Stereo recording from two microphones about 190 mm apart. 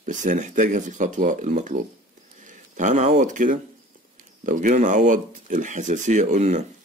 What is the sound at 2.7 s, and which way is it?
Speech, 40° right (ahead or behind).